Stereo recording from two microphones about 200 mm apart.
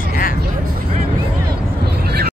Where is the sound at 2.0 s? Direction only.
50° right (ahead or behind).